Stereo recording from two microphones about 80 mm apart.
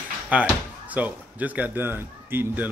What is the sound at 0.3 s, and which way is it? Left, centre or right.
Speech, centre.